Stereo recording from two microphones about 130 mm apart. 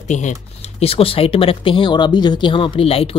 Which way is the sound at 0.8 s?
50° left (ahead or behind).